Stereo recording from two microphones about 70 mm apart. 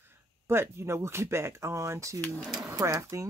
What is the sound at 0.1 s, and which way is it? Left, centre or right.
Speech, right.